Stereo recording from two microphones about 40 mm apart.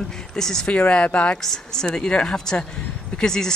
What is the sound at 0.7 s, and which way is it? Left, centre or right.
Speech, left.